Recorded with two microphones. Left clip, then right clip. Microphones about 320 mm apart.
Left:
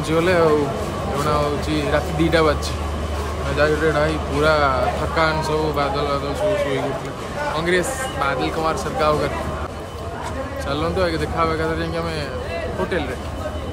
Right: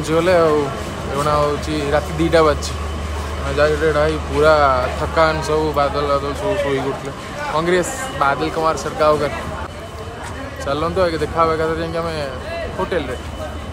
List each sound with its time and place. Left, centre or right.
0.1 s a man's voice: centre
3.5 s a man's voice: centre
7.5 s a man's voice: centre
10.7 s a man's voice: centre